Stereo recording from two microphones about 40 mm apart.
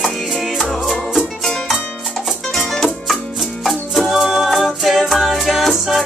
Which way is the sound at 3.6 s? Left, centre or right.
Centre.